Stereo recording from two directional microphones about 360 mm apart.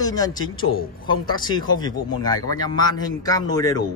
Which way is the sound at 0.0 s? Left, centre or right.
Centre.